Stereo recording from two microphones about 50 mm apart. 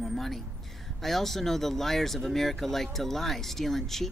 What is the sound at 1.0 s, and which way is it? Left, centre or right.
Speech, centre.